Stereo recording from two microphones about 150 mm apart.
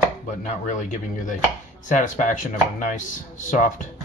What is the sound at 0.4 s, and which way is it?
Speech, 60° left (ahead or behind).